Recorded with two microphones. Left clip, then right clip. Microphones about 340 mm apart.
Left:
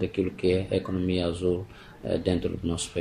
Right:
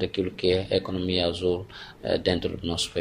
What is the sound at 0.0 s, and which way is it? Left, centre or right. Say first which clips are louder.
Speech: right 1 dB; right.